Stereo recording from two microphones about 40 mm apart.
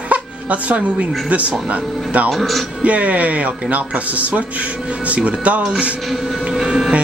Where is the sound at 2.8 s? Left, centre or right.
Right.